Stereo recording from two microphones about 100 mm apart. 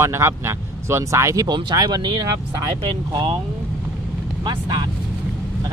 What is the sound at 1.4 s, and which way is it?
Speech, 45° right (ahead or behind).